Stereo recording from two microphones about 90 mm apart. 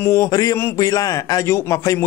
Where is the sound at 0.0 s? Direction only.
35° left (ahead or behind).